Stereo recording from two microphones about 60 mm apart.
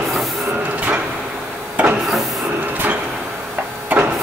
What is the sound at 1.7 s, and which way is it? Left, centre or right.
Printer, right.